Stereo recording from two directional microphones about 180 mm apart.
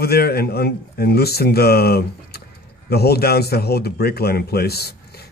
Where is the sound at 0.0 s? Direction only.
60° left (ahead or behind).